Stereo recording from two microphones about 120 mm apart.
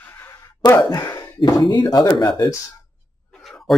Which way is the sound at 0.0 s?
20° left (ahead or behind).